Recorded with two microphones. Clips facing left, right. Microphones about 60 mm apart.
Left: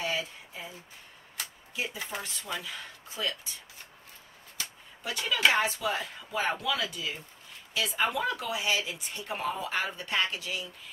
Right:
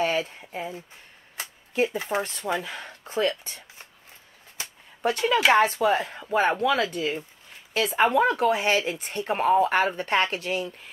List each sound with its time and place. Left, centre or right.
0.0 s a sound: right
1.7 s speech: right
5.0 s speech: right